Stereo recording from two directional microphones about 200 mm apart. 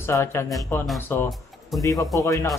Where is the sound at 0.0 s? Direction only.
10° left (ahead or behind).